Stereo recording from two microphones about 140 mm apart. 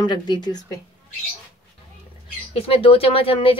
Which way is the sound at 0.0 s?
30° left (ahead or behind).